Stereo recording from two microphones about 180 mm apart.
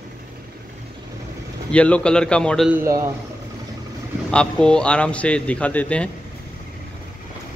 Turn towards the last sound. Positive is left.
turn(degrees=10)  # may be behind; listen again after turning